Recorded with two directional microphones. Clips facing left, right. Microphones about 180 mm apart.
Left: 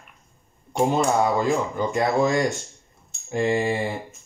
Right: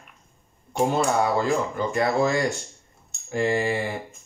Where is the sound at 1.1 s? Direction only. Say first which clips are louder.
Left 1 dB; 15° left (ahead or behind).